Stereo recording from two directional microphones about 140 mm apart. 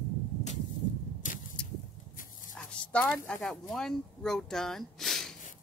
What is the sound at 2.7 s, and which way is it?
Speech, 10° left (ahead or behind).